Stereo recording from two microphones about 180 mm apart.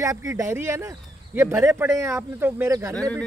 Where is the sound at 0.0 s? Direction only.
20° right (ahead or behind).